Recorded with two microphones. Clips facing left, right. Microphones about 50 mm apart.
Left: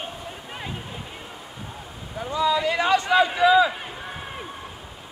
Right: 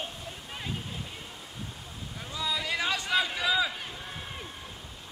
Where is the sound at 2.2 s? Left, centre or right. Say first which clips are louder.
Left 11 dB; left.